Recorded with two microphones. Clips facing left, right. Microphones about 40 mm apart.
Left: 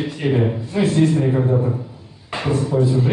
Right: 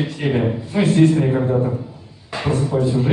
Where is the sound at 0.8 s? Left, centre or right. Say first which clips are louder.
Right 1 dB; right.